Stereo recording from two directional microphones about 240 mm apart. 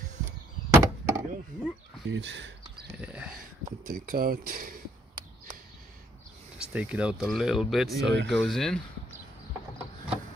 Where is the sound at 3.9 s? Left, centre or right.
Right.